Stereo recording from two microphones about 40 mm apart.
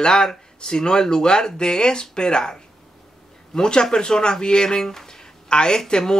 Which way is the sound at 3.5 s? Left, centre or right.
Centre.